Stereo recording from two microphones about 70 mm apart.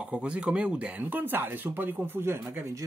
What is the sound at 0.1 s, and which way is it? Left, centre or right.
Speech, centre.